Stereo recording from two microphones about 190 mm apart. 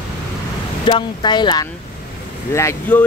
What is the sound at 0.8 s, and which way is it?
Speech, 25° left (ahead or behind).